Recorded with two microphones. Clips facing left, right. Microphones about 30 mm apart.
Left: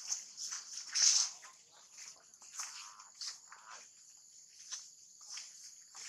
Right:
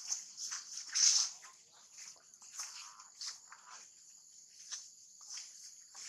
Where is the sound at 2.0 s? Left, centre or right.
Left.